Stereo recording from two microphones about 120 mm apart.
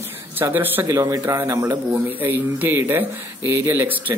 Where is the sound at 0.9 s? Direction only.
25° right (ahead or behind).